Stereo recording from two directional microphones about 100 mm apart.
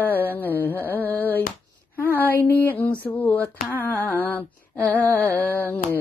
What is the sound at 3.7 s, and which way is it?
Humming, 20° left (ahead or behind).